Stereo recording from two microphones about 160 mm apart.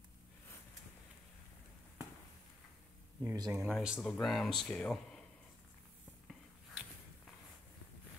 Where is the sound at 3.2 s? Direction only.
20° right (ahead or behind).